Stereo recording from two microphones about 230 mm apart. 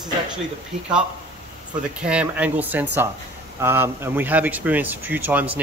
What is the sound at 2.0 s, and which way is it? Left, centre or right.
Speech, centre.